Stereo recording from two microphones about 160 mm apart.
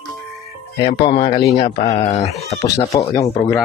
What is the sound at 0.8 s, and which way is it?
Speech, 35° left (ahead or behind).